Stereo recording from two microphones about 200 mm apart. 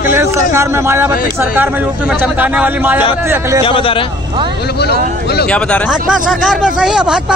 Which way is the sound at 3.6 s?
25° left (ahead or behind).